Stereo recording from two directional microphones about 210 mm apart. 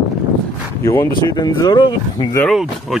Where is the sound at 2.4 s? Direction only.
Centre (ahead or behind).